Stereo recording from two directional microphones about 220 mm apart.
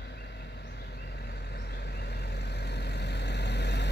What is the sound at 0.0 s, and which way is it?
Vehicle, 50° left (ahead or behind).